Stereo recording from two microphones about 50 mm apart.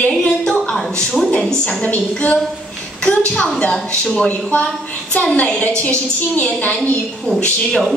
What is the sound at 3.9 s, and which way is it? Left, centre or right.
A woman's voice, left.